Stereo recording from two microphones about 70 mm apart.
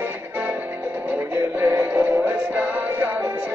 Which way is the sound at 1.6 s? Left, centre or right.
Right.